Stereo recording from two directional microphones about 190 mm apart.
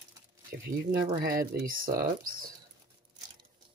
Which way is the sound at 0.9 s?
20° right (ahead or behind).